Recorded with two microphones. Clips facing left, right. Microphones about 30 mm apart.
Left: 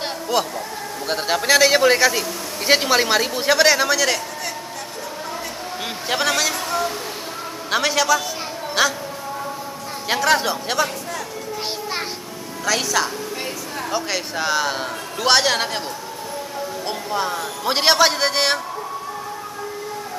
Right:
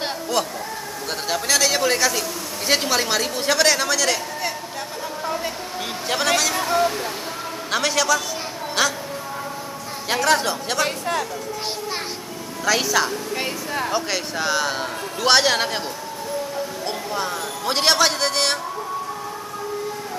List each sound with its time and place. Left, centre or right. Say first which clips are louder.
0.3 s a man's voice: left 3 dB; centre
6.0 s a man's voice: even; centre
6.5 s speech: right 3 dB; centre
7.7 s a man's voice: left 2 dB; centre
10.0 s a man's voice: left 1 dB; centre
12.6 s a man's voice: right 1 dB; centre
16.8 s music: left 4 dB; centre
17.3 s a man's voice: left 2 dB; centre